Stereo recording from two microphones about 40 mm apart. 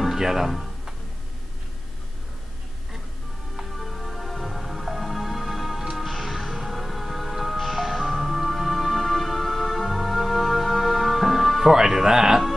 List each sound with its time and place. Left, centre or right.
0.0 s speech: centre
3.5 s music: centre
11.7 s speech: centre